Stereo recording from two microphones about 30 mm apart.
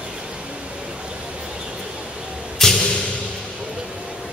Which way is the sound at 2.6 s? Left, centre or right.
Centre.